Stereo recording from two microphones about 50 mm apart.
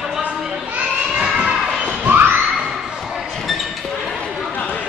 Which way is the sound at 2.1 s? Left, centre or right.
Right.